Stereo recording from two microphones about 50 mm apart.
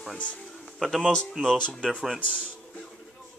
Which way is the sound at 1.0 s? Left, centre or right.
Left.